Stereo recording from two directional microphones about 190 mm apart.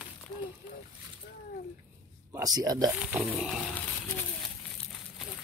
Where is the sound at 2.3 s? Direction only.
20° right (ahead or behind).